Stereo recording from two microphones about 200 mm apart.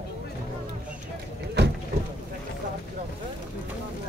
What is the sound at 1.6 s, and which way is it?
Boat, 55° right (ahead or behind).